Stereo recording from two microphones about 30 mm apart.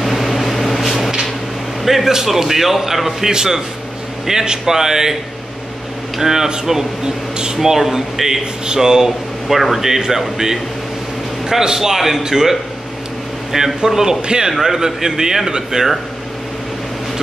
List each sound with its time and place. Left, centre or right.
0.0 s microwave oven: centre
2.0 s a man's voice: centre
3.3 s a man's voice: right
6.1 s a man's voice: centre
9.5 s a man's voice: centre
13.5 s a man's voice: centre
14.2 s a man's voice: right
14.6 s a man's voice: centre